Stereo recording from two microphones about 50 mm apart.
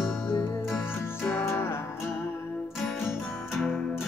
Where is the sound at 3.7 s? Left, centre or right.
Centre.